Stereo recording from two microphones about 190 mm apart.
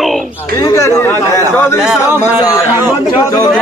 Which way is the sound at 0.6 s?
15° left (ahead or behind).